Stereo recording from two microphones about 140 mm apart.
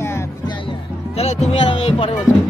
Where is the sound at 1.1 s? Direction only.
50° left (ahead or behind).